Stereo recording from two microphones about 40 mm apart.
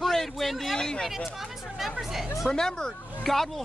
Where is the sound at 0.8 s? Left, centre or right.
Centre.